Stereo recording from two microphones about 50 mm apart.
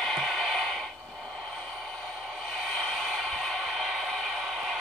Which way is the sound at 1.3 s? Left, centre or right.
Centre.